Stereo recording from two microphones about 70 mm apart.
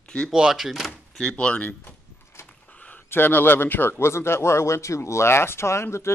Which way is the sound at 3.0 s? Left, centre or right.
Left.